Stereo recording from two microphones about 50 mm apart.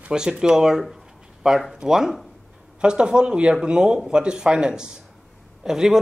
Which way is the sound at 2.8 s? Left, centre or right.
Centre.